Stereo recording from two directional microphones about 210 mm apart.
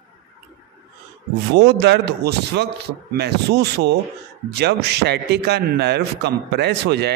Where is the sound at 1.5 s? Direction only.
50° right (ahead or behind).